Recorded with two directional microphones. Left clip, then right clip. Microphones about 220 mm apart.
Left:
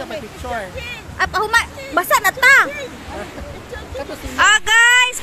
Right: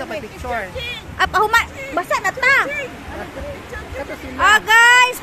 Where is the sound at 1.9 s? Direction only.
10° left (ahead or behind).